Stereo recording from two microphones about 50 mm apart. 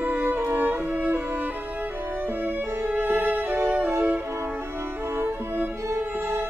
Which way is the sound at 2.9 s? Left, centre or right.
Right.